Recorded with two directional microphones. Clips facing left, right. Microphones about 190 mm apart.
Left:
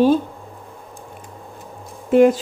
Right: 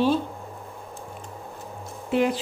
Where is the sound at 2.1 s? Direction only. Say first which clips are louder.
Left 10 dB; 50° left (ahead or behind).